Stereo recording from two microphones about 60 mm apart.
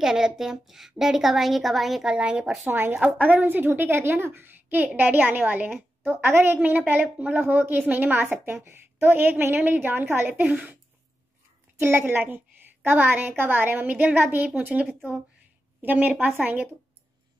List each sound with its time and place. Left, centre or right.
0.0 s a woman's voice: centre
2.0 s a woman's voice: centre
2.6 s a woman's voice: right
3.4 s a woman's voice: right
11.8 s a woman's voice: right